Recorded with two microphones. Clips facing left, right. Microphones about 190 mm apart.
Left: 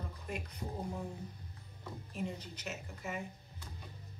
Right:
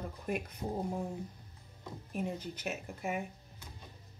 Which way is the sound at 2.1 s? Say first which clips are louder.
Right 4 dB; 55° right (ahead or behind).